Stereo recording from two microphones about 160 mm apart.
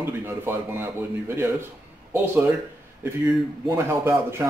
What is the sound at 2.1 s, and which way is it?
Speech, 10° right (ahead or behind).